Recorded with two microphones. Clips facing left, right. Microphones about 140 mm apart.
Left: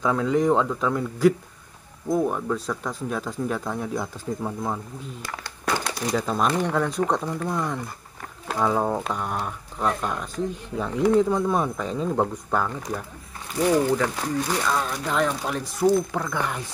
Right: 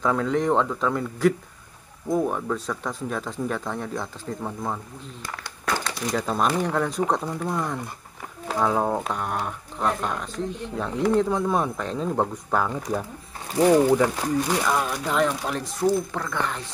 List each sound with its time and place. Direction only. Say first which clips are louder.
0.0 s speech: left 1 dB; centre (ahead or behind)
13.6 s speech: right 3 dB; 25° right (ahead or behind)
14.6 s speech: right 1 dB; 10° right (ahead or behind); by 16.6 s 10° left (ahead or behind)